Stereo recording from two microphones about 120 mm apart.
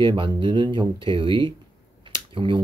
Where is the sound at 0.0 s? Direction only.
45° right (ahead or behind).